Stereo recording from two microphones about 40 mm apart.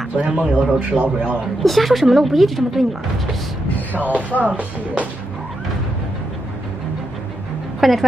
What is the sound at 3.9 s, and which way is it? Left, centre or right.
Speech, right.